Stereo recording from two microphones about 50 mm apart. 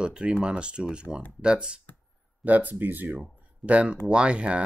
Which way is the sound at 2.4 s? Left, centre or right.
Right.